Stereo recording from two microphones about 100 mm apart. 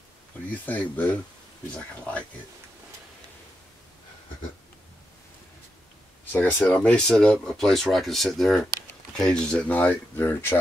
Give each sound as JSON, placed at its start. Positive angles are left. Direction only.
{"t": 0.5, "sound": "speech", "side_deg": 15}
{"t": 6.3, "sound": "speech", "side_deg": 15}